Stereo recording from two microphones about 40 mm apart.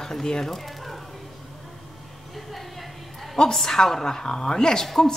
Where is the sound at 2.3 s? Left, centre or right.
Centre.